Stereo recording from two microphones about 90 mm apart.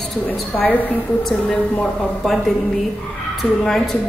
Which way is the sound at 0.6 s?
20° left (ahead or behind).